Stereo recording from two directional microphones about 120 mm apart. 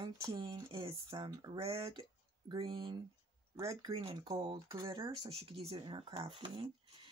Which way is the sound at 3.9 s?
55° right (ahead or behind).